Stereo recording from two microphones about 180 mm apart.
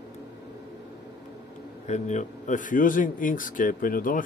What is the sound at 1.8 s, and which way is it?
A man's voice, 40° left (ahead or behind).